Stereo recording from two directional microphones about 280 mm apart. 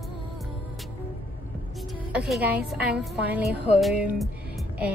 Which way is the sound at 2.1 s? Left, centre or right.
Centre.